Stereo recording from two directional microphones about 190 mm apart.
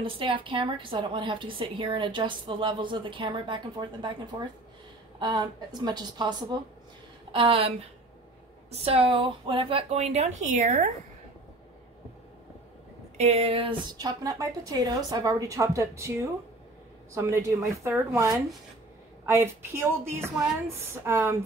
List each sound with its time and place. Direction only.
0.0 s a woman's voice: 25° right (ahead or behind)
8.8 s speech: 30° right (ahead or behind)
13.2 s a woman's voice: 35° right (ahead or behind); by 16.1 s 15° right (ahead or behind)
17.1 s a woman's voice: 15° right (ahead or behind)